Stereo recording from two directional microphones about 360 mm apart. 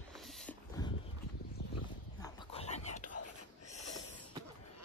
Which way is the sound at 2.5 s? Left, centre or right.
Centre.